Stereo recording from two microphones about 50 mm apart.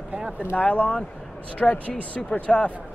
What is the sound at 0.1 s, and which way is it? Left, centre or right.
Speech, right.